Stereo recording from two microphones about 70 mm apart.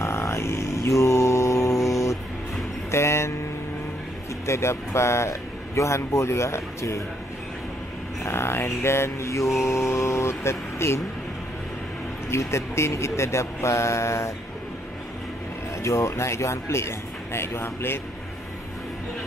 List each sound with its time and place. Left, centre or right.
0.0 s mantra: left
2.9 s music: left
4.5 s speech: left
8.2 s speech: left
12.3 s speech: left
15.8 s speech: left